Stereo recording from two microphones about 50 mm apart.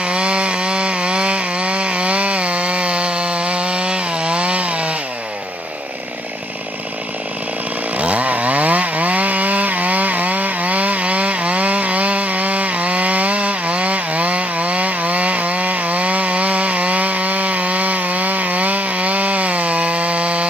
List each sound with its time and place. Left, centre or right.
0.0 s chainsaw: right
8.0 s chainsaw: right